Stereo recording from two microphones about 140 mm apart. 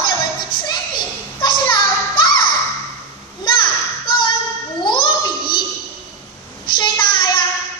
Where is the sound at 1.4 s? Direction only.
30° left (ahead or behind).